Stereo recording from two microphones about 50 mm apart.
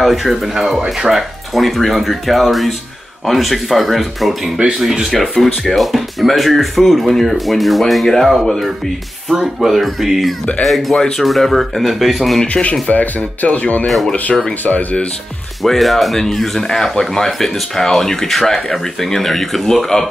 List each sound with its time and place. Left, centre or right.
0.0 s speech: centre
5.1 s speech: centre
12.8 s speech: left
15.6 s speech: centre